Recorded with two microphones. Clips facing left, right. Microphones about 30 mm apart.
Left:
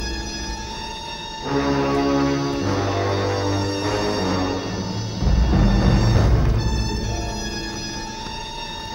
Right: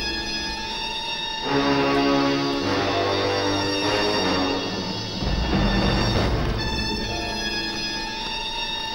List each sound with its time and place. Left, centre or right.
1.5 s music: right